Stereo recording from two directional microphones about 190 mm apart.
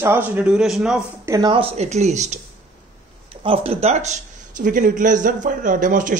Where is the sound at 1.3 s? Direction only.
25° right (ahead or behind).